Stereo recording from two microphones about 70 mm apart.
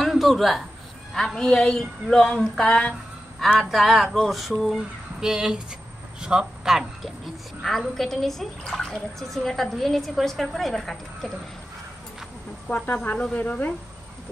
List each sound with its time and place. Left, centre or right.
0.0 s a man's voice: centre
1.1 s a sound: centre
3.5 s a man's voice: centre
7.6 s speech: centre
12.6 s speech: left